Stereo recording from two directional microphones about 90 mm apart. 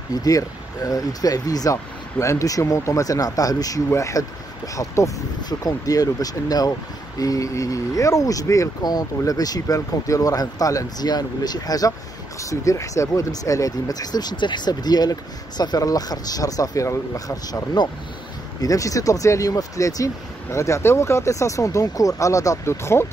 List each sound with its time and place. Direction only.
0.1 s speech: 40° left (ahead or behind)
17.8 s speech: 55° left (ahead or behind)
18.6 s speech: 40° left (ahead or behind)